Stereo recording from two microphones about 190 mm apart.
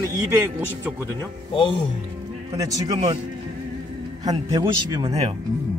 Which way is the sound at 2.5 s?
20° right (ahead or behind).